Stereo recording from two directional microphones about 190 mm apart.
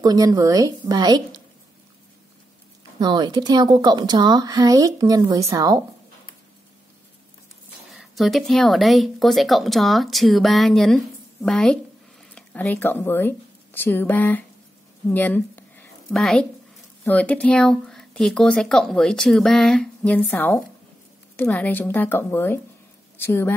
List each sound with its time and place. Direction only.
0.0 s speech: 20° right (ahead or behind)
3.0 s speech: 20° right (ahead or behind)
7.9 s a woman's voice: centre (ahead or behind)